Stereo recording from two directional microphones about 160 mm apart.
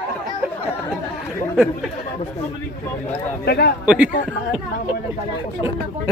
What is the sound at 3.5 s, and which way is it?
Speech, 90° left.